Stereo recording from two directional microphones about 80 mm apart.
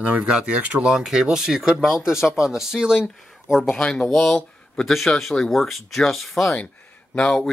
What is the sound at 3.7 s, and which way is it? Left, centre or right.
Speech, centre.